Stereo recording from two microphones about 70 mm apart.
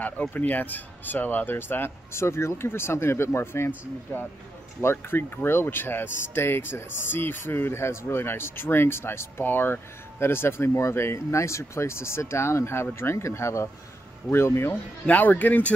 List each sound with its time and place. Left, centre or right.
0.3 s speech: left
14.7 s speech: left